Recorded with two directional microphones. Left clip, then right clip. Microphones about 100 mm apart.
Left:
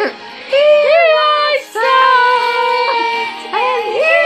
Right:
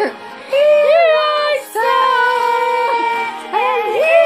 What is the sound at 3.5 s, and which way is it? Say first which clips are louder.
Music: even; 15° left (ahead or behind).